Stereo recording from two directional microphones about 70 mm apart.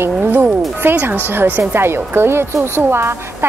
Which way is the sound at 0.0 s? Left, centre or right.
Right.